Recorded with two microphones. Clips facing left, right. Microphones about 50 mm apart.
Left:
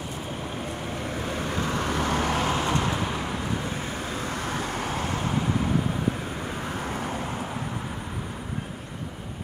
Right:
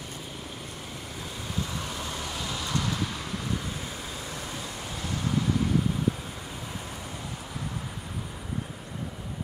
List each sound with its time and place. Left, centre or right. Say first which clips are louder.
1.4 s vehicle: left 5 dB; left
4.3 s vehicle: left 7 dB; left